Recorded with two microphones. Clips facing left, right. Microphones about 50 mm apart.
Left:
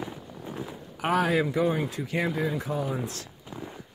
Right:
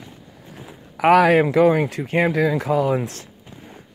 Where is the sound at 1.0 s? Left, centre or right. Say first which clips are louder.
Right 11 dB; right.